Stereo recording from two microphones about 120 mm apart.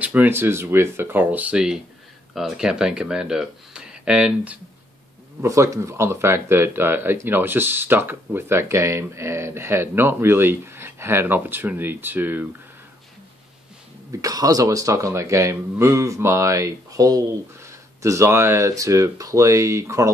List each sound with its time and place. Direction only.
0.0 s speech: 15° right (ahead or behind)
5.4 s speech: 25° right (ahead or behind)
14.1 s speech: 30° right (ahead or behind)